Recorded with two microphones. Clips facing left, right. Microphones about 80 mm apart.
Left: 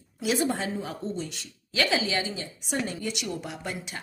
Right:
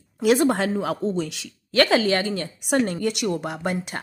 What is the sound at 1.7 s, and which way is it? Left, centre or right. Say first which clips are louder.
A woman's voice: right 8 dB; right.